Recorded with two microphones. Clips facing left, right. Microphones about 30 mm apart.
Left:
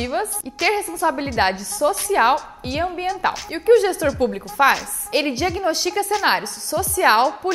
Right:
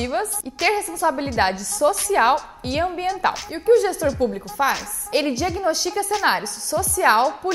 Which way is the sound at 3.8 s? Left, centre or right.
Left.